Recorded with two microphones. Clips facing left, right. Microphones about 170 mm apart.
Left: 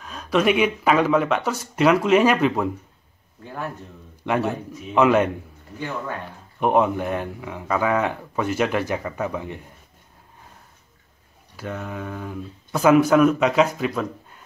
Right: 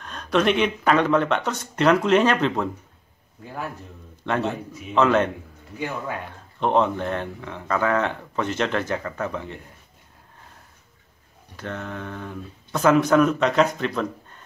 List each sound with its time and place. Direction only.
0.0 s speech: 5° left (ahead or behind)
3.4 s a man's voice: 5° right (ahead or behind)
4.3 s speech: 10° left (ahead or behind)
6.6 s speech: 10° left (ahead or behind)
11.5 s speech: 5° left (ahead or behind)